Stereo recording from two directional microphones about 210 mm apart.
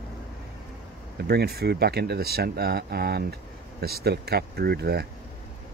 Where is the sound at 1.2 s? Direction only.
50° right (ahead or behind).